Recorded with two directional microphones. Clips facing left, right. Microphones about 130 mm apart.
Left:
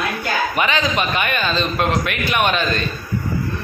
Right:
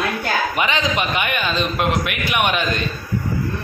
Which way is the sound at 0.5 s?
20° right (ahead or behind).